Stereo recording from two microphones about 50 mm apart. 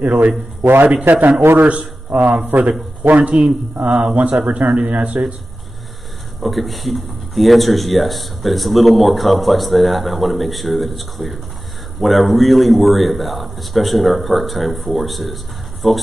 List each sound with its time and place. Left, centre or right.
0.0 s a man's voice: right
0.7 s a man's voice: right
6.4 s a man's voice: centre